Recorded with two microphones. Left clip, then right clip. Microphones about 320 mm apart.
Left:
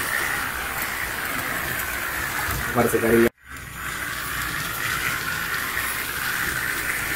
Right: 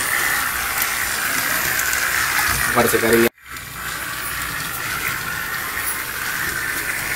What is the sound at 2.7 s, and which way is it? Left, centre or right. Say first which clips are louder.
Speech: right 2 dB; centre.